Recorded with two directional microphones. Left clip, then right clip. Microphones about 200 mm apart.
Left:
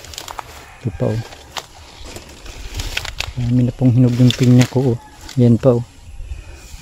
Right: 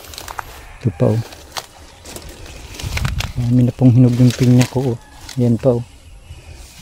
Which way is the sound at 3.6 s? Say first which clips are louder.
Right 2 dB; 15° right (ahead or behind).